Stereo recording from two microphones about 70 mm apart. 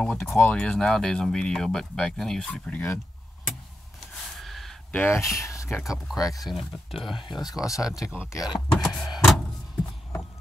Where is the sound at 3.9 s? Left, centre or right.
Centre.